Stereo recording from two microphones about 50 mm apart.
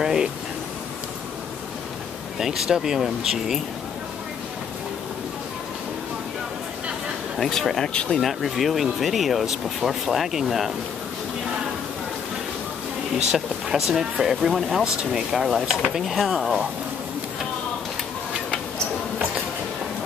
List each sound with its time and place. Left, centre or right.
0.0 s a sound: centre
2.3 s speech: centre
7.3 s speech: centre
7.9 s speech: left
8.2 s speech: centre
13.3 s speech: centre